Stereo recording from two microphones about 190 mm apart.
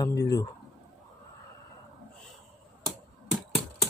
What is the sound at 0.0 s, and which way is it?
Speech, 20° left (ahead or behind).